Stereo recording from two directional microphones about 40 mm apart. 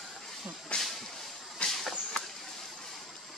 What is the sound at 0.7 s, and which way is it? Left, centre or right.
Whip, left.